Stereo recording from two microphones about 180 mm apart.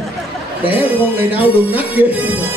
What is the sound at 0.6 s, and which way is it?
Speech, 10° right (ahead or behind).